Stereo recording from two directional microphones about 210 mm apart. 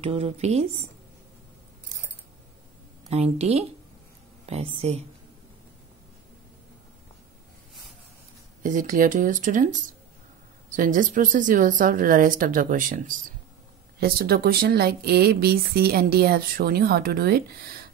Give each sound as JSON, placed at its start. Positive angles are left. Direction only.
{"t": 0.0, "sound": "a woman's voice", "side_deg": -30}
{"t": 3.1, "sound": "a woman's voice", "side_deg": -30}
{"t": 8.6, "sound": "speech", "side_deg": -40}